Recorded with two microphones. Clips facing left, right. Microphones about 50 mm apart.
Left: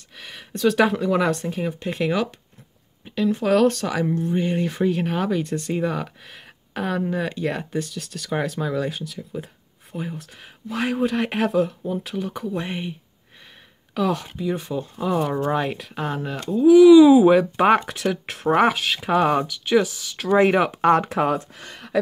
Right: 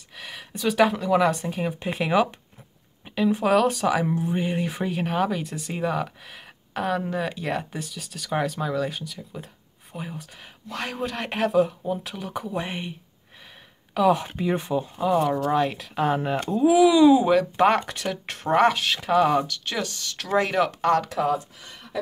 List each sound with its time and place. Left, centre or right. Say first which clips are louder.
0.2 s speech: left 6 dB; centre
13.9 s speech: right 3 dB; centre
14.3 s speech: right 1 dB; right
14.7 s speech: right 2 dB; centre
15.2 s speech: even; centre
15.5 s speech: right 1 dB; centre
16.2 s speech: even; right; by 20.2 s centre
20.2 s speech: left 5 dB; left
21.2 s speech: left 2 dB; left
21.5 s a sound: left 5 dB; left